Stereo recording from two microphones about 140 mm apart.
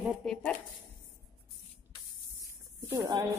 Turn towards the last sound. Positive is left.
turn(degrees=-20)  # may be behind; listen again after turning